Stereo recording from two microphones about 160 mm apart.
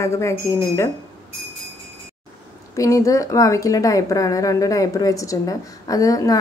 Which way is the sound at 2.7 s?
20° left (ahead or behind).